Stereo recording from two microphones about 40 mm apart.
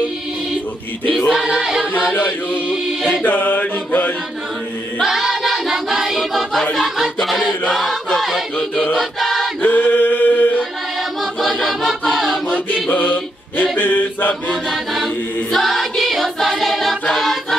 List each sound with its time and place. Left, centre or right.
1.5 s chant: centre
2.7 s music: centre
3.3 s mantra: left
5.0 s music: centre
7.2 s choir: centre
9.6 s male singing: left
11.4 s choir: centre
12.9 s a sound: left
14.5 s choir: centre
17.0 s music: centre